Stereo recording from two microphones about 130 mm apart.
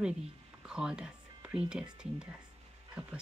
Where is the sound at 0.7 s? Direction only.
5° right (ahead or behind).